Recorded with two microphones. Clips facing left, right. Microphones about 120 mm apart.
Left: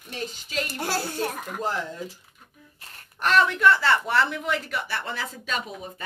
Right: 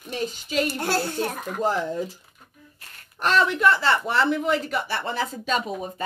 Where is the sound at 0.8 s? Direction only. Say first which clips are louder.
Right 3 dB; 5° left (ahead or behind).